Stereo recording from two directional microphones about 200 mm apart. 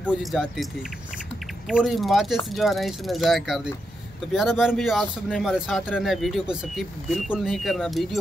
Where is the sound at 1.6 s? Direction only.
Centre (ahead or behind).